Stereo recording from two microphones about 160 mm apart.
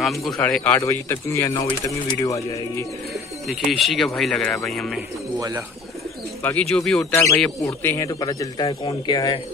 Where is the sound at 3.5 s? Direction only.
Centre (ahead or behind).